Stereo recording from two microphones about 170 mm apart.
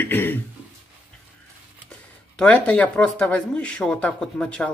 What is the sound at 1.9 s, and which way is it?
Speech, 5° left (ahead or behind).